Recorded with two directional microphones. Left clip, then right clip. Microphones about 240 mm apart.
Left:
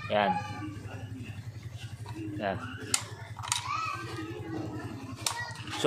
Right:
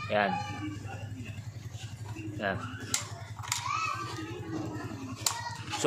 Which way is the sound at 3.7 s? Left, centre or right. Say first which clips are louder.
Right 4 dB; right.